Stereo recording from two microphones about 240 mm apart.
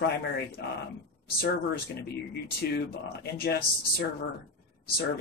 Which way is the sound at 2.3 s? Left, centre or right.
Left.